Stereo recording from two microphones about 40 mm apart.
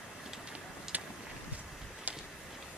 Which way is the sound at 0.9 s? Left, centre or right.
Right.